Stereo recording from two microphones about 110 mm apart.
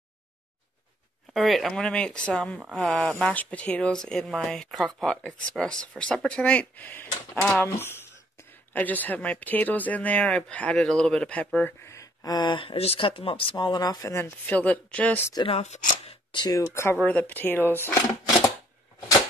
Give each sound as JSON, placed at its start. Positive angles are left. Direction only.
{"t": 1.3, "sound": "speech", "side_deg": 0}
{"t": 14.4, "sound": "speech", "side_deg": 15}
{"t": 15.4, "sound": "speech", "side_deg": 80}
{"t": 16.3, "sound": "a sound", "side_deg": 45}
{"t": 16.7, "sound": "speech", "side_deg": 20}